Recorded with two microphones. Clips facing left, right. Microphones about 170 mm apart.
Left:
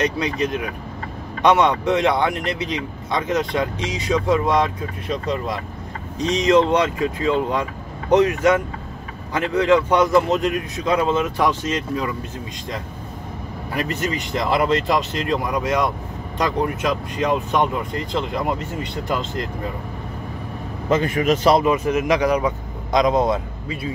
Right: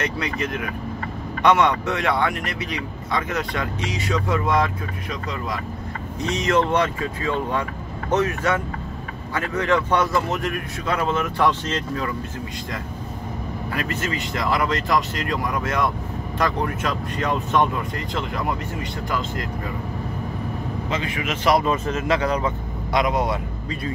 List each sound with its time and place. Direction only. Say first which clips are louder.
0.0 s speech: left 4 dB; 20° left (ahead or behind)
6.2 s speech: left 5 dB; 15° left (ahead or behind)
13.7 s speech: left 4 dB; 20° left (ahead or behind)
20.9 s a man's voice: left 10 dB; 45° left (ahead or behind)
21.5 s speech: left 4 dB; 15° left (ahead or behind)